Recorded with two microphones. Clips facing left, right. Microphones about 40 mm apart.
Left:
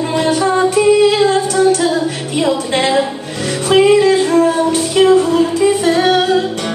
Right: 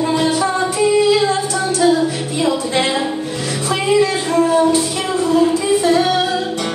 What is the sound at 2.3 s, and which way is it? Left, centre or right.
Music, left.